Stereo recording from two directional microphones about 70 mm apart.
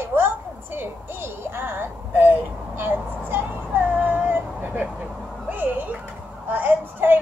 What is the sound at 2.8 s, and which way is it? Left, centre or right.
Child singing, right.